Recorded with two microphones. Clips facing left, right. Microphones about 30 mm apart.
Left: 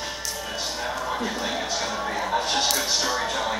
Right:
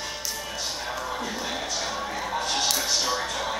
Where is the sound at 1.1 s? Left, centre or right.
Centre.